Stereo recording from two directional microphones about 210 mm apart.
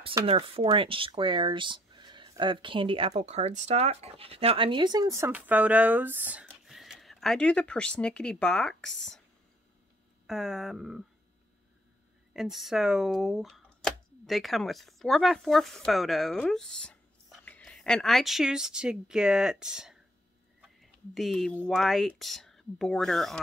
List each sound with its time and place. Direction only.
0.2 s speech: 25° right (ahead or behind); by 9.2 s centre (ahead or behind)
10.2 s speech: centre (ahead or behind)
12.4 s speech: centre (ahead or behind)
20.6 s a sound: centre (ahead or behind)
21.6 s speech: centre (ahead or behind)